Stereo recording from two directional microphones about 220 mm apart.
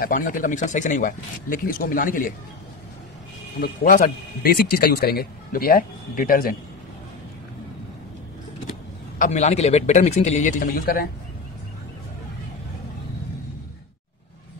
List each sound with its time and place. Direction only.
0.0 s speech: 40° left (ahead or behind)
3.6 s speech: 40° left (ahead or behind)
9.2 s speech: 30° left (ahead or behind)